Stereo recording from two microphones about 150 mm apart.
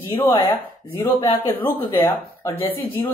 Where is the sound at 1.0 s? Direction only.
35° left (ahead or behind).